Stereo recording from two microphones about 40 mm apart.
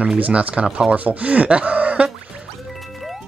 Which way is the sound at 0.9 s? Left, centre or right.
Right.